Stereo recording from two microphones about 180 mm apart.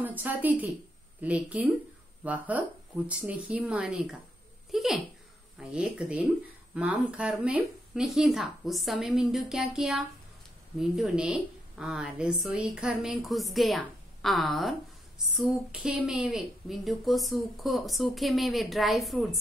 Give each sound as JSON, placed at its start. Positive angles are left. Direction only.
{"t": 0.0, "sound": "a woman's voice", "side_deg": -10}
{"t": 4.6, "sound": "a sound", "side_deg": 0}
{"t": 5.6, "sound": "a woman's voice", "side_deg": -5}